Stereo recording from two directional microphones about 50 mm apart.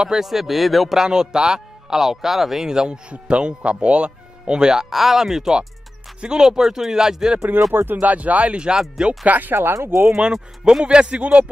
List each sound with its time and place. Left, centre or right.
0.0 s speech: centre
2.0 s speech: centre
7.7 s speech: right
8.7 s speech: centre
9.2 s speech: right
9.8 s speech: right
10.1 s speech: centre